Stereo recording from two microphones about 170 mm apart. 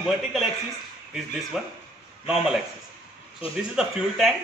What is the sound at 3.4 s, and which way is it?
Speech, 35° left (ahead or behind).